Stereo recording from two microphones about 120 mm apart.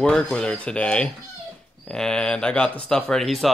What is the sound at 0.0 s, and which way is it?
Speech, 5° left (ahead or behind).